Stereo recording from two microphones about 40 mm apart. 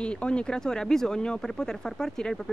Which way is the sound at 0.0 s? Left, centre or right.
Left.